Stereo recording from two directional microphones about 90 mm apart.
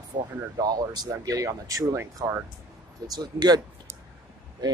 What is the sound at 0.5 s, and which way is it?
Speech, 50° right (ahead or behind).